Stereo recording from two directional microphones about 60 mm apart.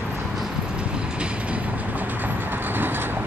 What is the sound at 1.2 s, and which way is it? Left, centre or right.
Train, right.